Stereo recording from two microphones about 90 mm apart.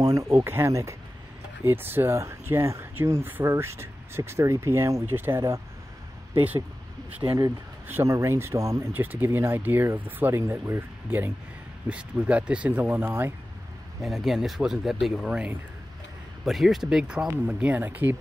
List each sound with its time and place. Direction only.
0.0 s speech: 40° right (ahead or behind)
0.4 s speech: 30° right (ahead or behind)
1.7 s speech: 25° right (ahead or behind)
7.2 s speech: 50° right (ahead or behind)
7.9 s speech: 35° right (ahead or behind)
8.9 s speech: 20° right (ahead or behind)
14.0 s speech: centre (ahead or behind)
16.4 s speech: 5° right (ahead or behind)
17.5 s speech: 15° right (ahead or behind)